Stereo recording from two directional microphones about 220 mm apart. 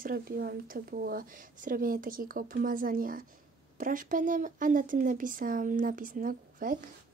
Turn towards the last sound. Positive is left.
turn(degrees=-40)  # may be behind; listen again after turning